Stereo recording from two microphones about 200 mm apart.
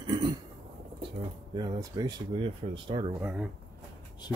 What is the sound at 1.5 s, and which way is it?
Speech, 20° right (ahead or behind).